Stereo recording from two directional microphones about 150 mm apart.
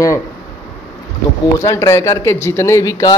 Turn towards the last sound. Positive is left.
turn(degrees=20)  # may be behind; listen again after turning